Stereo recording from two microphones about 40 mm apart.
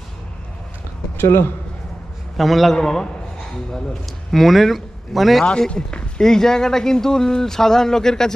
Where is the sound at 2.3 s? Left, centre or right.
Centre.